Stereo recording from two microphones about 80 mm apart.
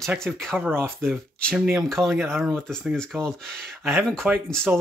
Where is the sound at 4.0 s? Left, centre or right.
Centre.